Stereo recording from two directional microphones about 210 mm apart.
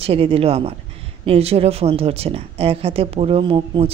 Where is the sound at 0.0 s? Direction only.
25° right (ahead or behind).